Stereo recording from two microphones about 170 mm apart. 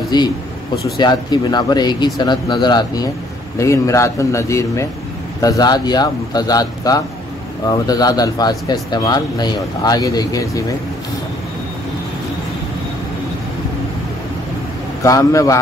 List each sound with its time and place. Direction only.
0.1 s a man's voice: 25° left (ahead or behind)
15.0 s speech: 20° left (ahead or behind)